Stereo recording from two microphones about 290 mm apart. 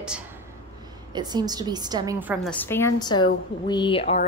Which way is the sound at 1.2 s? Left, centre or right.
Centre.